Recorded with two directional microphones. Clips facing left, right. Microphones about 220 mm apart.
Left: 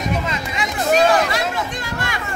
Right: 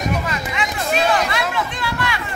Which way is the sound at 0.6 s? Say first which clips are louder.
Left 5 dB; 40° left (ahead or behind).